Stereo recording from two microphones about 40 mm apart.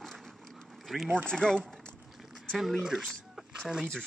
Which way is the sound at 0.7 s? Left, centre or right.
Centre.